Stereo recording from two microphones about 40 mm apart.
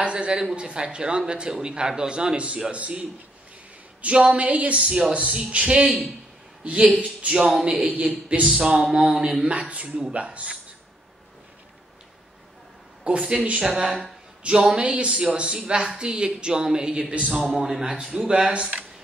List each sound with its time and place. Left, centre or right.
0.0 s a sound: right
0.6 s speech: right
4.7 s speech: right
7.3 s speech: centre
7.6 s speech: right
13.2 s speech: centre
16.5 s speech: centre
17.1 s speech: right
17.6 s speech: centre
18.1 s speech: right